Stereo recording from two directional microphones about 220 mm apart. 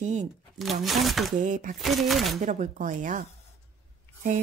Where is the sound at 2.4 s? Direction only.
35° right (ahead or behind).